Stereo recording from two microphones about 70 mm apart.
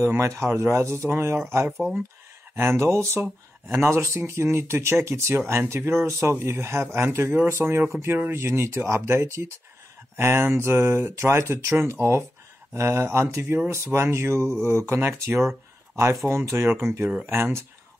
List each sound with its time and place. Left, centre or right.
0.4 s speech: right